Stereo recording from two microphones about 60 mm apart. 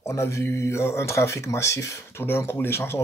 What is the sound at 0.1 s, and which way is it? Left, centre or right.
Speech, left.